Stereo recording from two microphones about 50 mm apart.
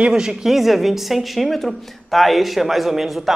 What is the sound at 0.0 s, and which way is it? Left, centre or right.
A woman's voice, centre.